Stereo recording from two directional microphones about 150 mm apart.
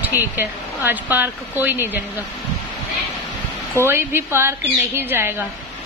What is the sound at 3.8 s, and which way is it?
Speech, 15° right (ahead or behind).